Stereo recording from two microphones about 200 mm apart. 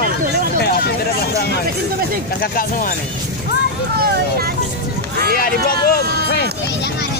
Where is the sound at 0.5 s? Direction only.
50° left (ahead or behind).